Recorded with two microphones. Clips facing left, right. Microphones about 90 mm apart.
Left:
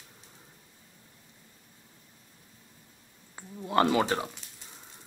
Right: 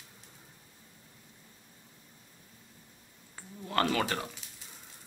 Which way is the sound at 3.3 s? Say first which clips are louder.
Left 5 dB; 20° left (ahead or behind).